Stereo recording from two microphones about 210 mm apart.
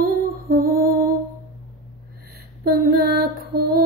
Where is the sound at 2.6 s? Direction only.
45° right (ahead or behind).